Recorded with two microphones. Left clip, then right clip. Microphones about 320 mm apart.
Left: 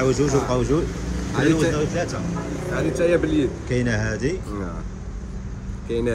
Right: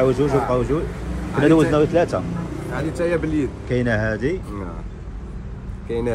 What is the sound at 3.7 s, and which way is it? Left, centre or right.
Speech, centre.